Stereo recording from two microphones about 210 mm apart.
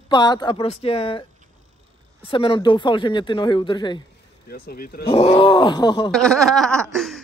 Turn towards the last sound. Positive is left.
turn(degrees=0)  # may be behind; listen again after turning